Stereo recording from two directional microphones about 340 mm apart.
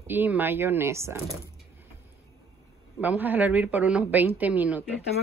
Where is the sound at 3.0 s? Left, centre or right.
Centre.